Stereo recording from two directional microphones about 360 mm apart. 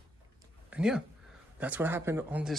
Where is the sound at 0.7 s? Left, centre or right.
Centre.